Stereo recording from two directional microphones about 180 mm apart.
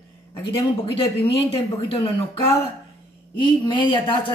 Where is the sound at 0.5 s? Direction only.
30° left (ahead or behind).